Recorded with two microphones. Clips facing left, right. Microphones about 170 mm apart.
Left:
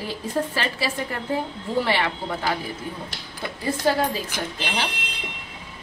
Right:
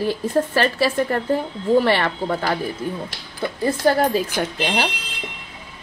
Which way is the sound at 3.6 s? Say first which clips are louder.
Right 4 dB; 60° right (ahead or behind).